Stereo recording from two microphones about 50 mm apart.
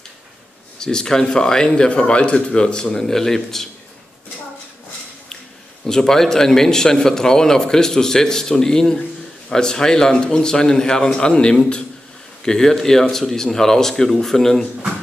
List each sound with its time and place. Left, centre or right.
0.7 s speech: centre
5.9 s speech: centre